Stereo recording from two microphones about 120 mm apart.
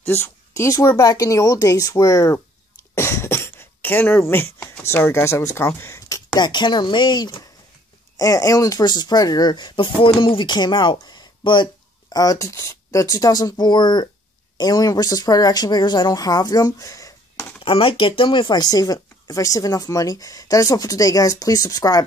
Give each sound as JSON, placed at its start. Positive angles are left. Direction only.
{"t": 0.1, "sound": "speech", "side_deg": 25}
{"t": 2.9, "sound": "a sound", "side_deg": 20}
{"t": 4.8, "sound": "speech", "side_deg": 20}
{"t": 17.6, "sound": "speech", "side_deg": 50}